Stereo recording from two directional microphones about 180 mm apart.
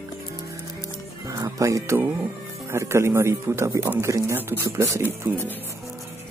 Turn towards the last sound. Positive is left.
turn(degrees=-10)  # may be behind; listen again after turning